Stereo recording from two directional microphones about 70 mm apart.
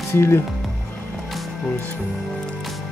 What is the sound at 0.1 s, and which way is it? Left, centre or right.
Speech, left.